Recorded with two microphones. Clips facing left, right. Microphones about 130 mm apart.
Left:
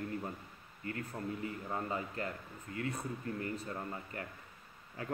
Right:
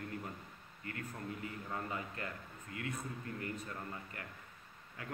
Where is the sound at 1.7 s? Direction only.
30° left (ahead or behind).